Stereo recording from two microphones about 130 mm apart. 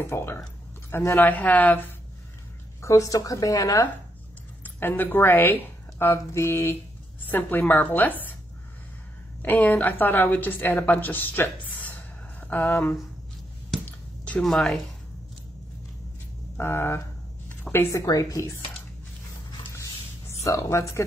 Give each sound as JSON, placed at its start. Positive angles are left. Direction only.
{"t": 0.0, "sound": "a woman's voice", "side_deg": 20}
{"t": 2.8, "sound": "speech", "side_deg": 25}
{"t": 4.6, "sound": "a woman's voice", "side_deg": 15}
{"t": 9.4, "sound": "a woman's voice", "side_deg": 15}
{"t": 14.2, "sound": "speech", "side_deg": 5}
{"t": 16.5, "sound": "speech", "side_deg": 20}
{"t": 19.7, "sound": "a sound", "side_deg": 20}
{"t": 20.4, "sound": "speech", "side_deg": 25}